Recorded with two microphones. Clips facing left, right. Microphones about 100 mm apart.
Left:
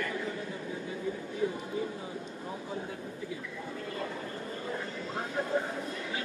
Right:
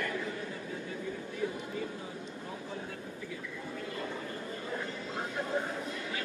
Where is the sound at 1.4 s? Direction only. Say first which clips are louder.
Left 4 dB; 20° left (ahead or behind).